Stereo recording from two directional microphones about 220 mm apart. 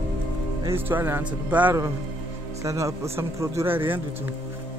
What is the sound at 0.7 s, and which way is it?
Speech, 10° right (ahead or behind).